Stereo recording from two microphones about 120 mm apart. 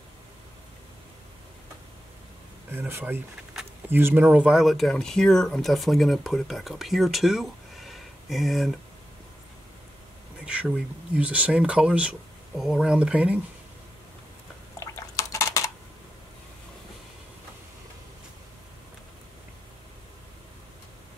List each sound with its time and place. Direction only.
2.7 s speech: 15° right (ahead or behind); by 8.7 s centre (ahead or behind)
10.4 s speech: 10° right (ahead or behind)
14.8 s a sound: 25° left (ahead or behind)